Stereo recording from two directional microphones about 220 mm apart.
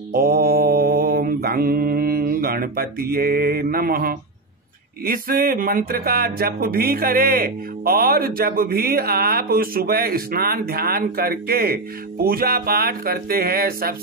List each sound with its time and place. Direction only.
0.1 s mantra: 40° right (ahead or behind)
5.0 s speech: 40° right (ahead or behind)